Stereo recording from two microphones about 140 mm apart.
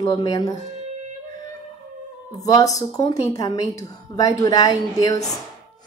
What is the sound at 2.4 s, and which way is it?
A woman's voice, 25° left (ahead or behind).